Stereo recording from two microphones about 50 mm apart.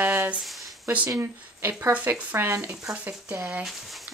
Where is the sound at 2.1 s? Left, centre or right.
Right.